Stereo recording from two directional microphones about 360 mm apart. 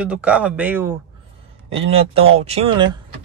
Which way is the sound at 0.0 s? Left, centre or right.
Centre.